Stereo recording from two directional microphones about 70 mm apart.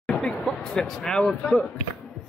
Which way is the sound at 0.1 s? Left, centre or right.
Centre.